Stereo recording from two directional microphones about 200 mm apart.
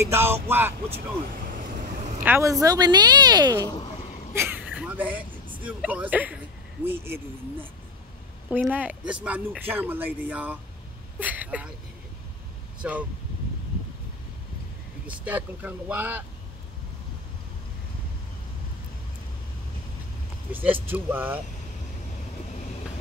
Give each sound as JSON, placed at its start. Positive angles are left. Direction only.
{"t": 0.0, "sound": "speech", "side_deg": -10}
{"t": 2.0, "sound": "vehicle", "side_deg": -35}
{"t": 2.2, "sound": "a woman's voice", "side_deg": -15}
{"t": 8.5, "sound": "speech", "side_deg": -5}
{"t": 12.8, "sound": "speech", "side_deg": -5}
{"t": 15.0, "sound": "speech", "side_deg": -5}
{"t": 20.5, "sound": "speech", "side_deg": -10}